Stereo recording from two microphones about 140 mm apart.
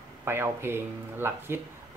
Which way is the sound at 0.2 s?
15° right (ahead or behind).